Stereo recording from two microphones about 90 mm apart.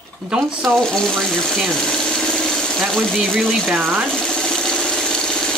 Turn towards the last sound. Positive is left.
turn(degrees=5)  # may be behind; listen again after turning